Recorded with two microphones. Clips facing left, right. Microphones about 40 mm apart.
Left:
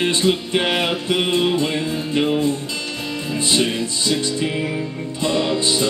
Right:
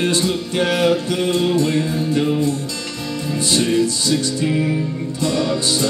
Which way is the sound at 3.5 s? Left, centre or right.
Left.